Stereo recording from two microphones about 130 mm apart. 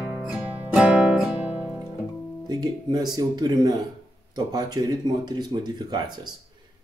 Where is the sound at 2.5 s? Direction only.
35° right (ahead or behind).